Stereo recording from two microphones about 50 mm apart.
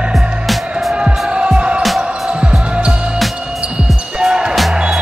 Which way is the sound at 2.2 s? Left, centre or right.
Centre.